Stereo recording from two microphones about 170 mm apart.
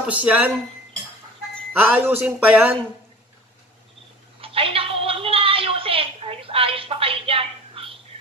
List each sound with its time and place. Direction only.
0.0 s speech: 10° right (ahead or behind)
1.7 s speech: 10° right (ahead or behind)
4.4 s a sound: 35° right (ahead or behind)